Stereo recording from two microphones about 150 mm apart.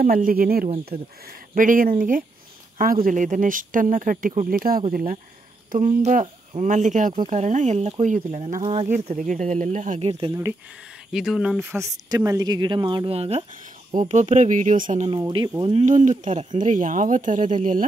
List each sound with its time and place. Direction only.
0.0 s speech: 70° right (ahead or behind)
1.5 s speech: 65° right (ahead or behind)
5.7 s speech: 60° right (ahead or behind)
8.5 s speech: 35° right (ahead or behind)
9.1 s speech: 60° right (ahead or behind); by 10.3 s 40° right (ahead or behind)
11.1 s speech: 5° right (ahead or behind)
11.6 s speech: 20° right (ahead or behind); by 15.0 s 55° right (ahead or behind)
15.0 s speech: 30° right (ahead or behind)
15.6 s speech: 40° right (ahead or behind)
15.9 s speech: 55° right (ahead or behind)